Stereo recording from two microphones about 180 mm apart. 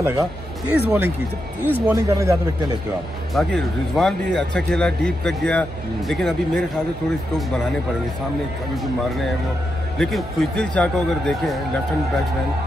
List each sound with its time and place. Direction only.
0.0 s speech: 10° right (ahead or behind)
3.3 s speech: centre (ahead or behind)
9.9 s speech: 5° left (ahead or behind)